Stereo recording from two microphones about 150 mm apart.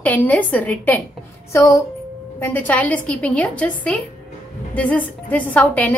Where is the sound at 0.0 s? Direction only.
10° left (ahead or behind).